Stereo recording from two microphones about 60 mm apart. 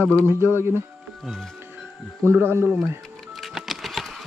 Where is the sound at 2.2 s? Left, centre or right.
Right.